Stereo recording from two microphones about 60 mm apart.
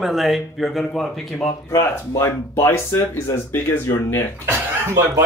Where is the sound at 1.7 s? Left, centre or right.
Left.